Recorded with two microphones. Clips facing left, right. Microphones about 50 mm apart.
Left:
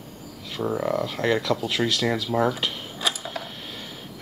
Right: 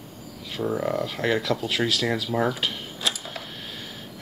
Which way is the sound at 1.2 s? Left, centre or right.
Centre.